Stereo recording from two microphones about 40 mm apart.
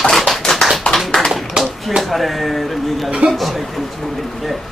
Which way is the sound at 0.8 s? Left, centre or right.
Left.